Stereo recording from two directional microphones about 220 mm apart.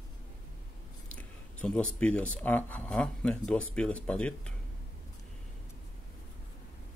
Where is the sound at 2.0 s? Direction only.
5° left (ahead or behind).